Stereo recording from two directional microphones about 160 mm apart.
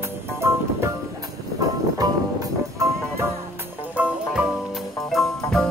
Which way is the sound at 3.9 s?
5° right (ahead or behind).